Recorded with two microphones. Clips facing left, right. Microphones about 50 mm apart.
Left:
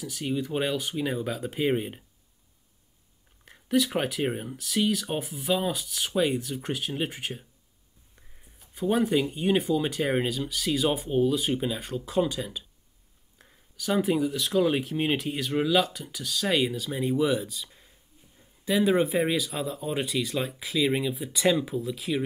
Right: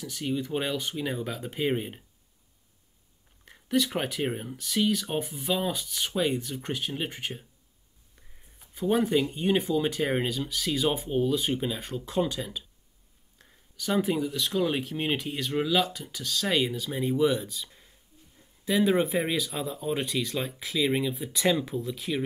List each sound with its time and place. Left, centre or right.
0.0 s speech: centre
3.4 s speech: centre